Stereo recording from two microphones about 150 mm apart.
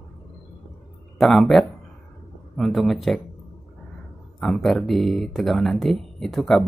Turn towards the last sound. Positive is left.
turn(degrees=0)  # may be behind; listen again after turning